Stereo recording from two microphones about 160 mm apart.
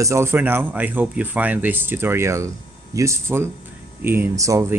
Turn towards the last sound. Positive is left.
turn(degrees=-20)  # may be behind; listen again after turning